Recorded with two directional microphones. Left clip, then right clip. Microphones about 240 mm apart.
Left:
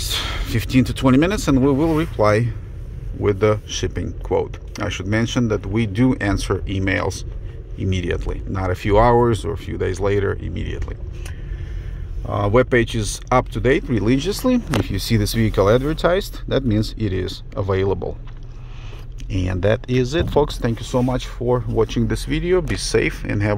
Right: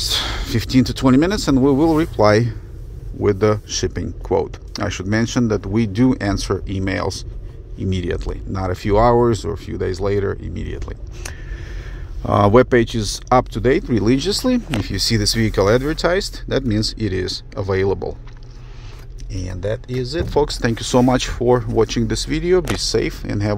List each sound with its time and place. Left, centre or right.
0.2 s speech: centre
12.2 s speech: right
12.5 s speech: centre
19.3 s speech: centre
20.2 s speech: centre